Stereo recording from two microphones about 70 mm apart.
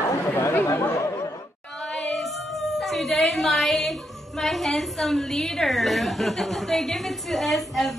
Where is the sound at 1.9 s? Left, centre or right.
Centre.